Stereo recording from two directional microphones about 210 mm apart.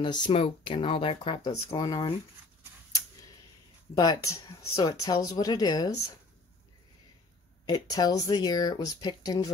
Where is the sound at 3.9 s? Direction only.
20° left (ahead or behind).